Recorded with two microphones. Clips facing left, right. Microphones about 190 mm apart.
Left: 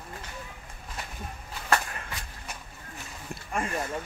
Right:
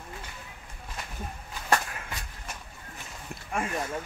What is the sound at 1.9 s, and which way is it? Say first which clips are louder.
Shuffle: even; centre (ahead or behind).